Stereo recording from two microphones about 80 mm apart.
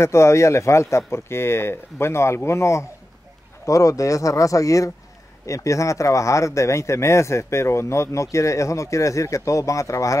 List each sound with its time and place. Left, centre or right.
0.0 s speech: left